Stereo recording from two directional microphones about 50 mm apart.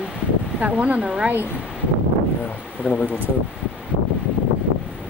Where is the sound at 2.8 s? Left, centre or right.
Left.